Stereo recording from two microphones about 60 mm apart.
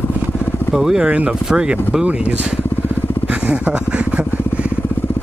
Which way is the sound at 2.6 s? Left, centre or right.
Left.